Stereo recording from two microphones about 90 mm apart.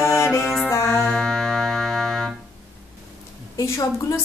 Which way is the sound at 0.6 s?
25° left (ahead or behind).